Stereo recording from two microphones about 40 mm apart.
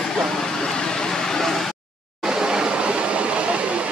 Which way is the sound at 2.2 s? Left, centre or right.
Centre.